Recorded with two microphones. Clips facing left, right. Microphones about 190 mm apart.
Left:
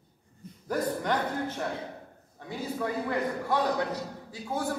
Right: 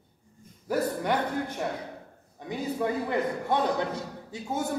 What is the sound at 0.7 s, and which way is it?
A man's voice, 10° right (ahead or behind).